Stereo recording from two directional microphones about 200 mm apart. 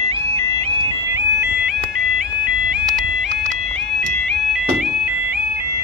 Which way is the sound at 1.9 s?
5° right (ahead or behind).